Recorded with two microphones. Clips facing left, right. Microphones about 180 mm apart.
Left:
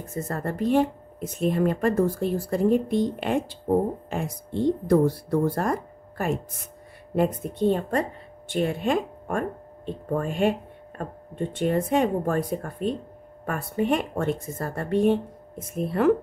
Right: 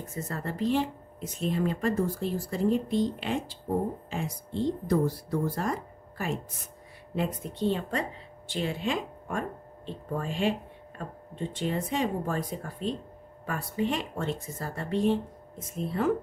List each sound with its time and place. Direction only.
0.1 s speech: 50° left (ahead or behind)